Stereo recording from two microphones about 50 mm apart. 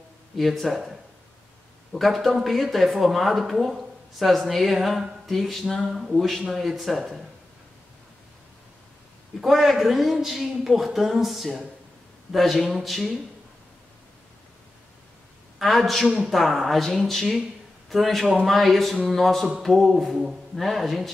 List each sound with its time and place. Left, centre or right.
0.4 s speech: centre
1.9 s speech: centre
5.9 s speech: centre
6.1 s speech: centre
9.4 s speech: centre
15.6 s a man's voice: centre